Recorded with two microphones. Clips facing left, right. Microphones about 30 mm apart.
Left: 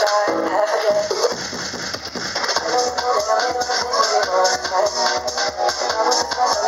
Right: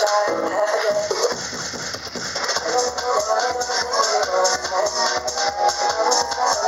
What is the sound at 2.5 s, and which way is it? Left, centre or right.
Music, centre.